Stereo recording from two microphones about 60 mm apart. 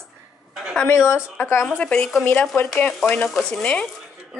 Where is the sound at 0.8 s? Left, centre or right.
Left.